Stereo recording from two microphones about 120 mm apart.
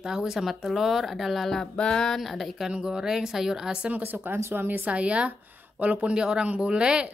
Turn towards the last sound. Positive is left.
turn(degrees=-10)  # may be behind; listen again after turning